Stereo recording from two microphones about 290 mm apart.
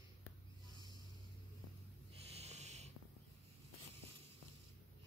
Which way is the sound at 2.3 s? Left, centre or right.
Right.